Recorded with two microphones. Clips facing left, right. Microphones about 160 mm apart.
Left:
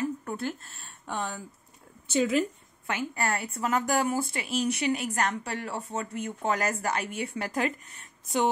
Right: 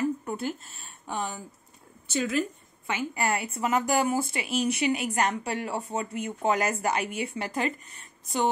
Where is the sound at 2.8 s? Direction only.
10° right (ahead or behind).